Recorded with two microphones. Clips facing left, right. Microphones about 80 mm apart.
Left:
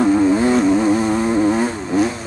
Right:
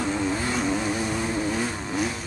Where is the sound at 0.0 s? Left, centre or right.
Left.